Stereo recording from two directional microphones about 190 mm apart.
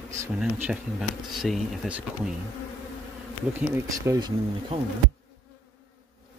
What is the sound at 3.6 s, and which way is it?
Speech, 15° right (ahead or behind).